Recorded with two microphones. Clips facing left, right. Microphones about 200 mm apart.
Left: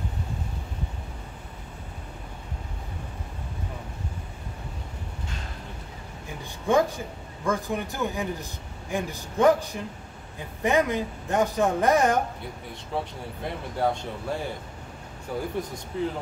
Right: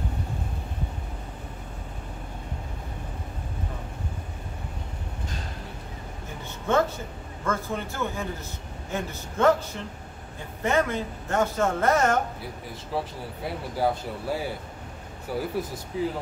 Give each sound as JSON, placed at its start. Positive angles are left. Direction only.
{"t": 6.7, "sound": "speech", "side_deg": 15}
{"t": 12.9, "sound": "speech", "side_deg": -5}